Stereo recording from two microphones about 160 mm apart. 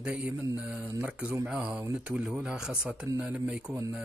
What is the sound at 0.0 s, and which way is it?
Speech, 10° right (ahead or behind).